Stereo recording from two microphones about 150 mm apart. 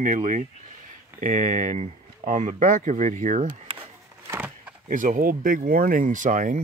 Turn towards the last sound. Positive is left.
turn(degrees=-55)  # may be behind; listen again after turning